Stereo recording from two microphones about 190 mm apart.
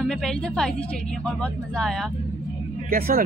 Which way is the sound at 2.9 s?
50° right (ahead or behind).